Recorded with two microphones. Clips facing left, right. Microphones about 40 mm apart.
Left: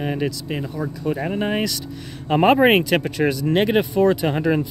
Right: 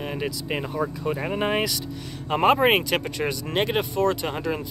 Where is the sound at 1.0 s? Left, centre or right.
Centre.